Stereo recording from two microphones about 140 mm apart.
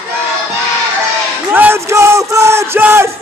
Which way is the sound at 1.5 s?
15° right (ahead or behind).